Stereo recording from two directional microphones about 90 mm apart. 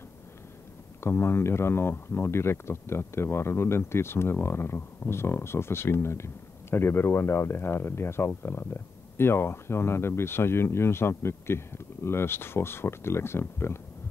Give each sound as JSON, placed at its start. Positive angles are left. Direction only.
{"t": 1.0, "sound": "speech", "side_deg": 30}